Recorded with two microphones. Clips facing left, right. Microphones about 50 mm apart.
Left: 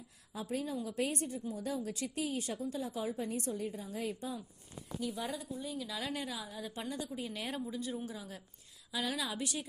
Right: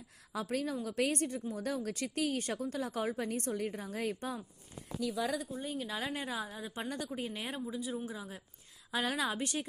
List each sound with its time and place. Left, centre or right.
0.3 s a woman's voice: right
5.4 s a woman's voice: right
6.9 s a woman's voice: right
7.2 s a woman's voice: right
7.4 s speech: centre
8.1 s a woman's voice: right
8.9 s a woman's voice: right